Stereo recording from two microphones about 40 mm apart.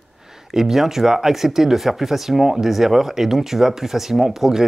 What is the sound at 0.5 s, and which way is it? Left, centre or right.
Speech, centre.